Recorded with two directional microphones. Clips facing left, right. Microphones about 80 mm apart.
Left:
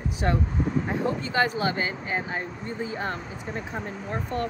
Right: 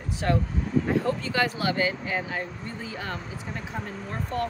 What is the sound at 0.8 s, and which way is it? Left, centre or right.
Speech, centre.